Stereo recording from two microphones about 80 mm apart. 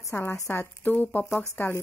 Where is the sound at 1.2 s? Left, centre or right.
Centre.